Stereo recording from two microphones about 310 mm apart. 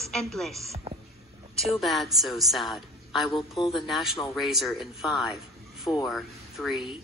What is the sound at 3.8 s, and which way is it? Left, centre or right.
Speech, centre.